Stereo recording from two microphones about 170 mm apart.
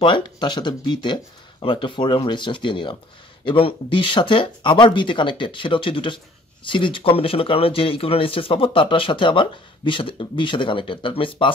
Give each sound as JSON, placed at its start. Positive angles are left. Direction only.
{"t": 0.0, "sound": "speech", "side_deg": 30}